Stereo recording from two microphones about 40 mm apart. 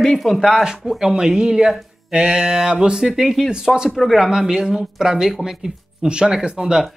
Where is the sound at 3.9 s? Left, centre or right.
Centre.